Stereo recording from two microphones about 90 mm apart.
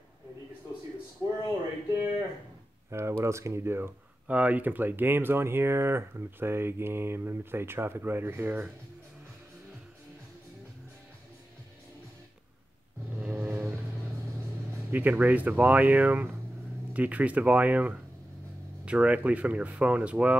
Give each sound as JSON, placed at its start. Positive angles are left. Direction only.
{"t": 1.2, "sound": "speech", "side_deg": -30}
{"t": 2.9, "sound": "speech", "side_deg": -30}
{"t": 13.2, "sound": "vehicle", "side_deg": -25}
{"t": 14.9, "sound": "speech", "side_deg": -20}